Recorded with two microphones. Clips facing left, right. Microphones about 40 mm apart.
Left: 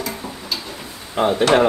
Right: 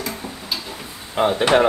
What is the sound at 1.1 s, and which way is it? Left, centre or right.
Speech, centre.